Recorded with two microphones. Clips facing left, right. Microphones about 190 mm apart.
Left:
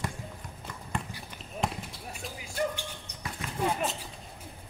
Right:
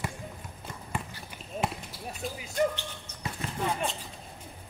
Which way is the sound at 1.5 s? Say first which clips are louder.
Right 1 dB; 25° right (ahead or behind).